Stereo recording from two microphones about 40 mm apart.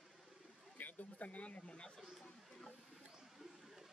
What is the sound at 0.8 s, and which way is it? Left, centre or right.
Speech, left.